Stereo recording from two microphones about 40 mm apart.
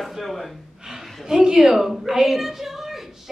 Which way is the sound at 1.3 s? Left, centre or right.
Centre.